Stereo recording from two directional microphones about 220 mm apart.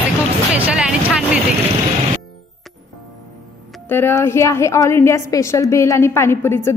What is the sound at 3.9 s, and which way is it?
A woman's voice, 10° left (ahead or behind).